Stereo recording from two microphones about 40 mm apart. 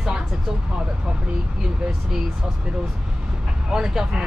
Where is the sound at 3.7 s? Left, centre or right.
Centre.